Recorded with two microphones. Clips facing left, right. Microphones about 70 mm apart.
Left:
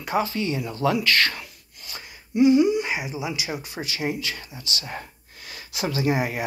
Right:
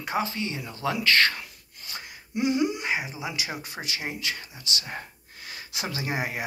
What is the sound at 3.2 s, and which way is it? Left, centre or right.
Speech, right.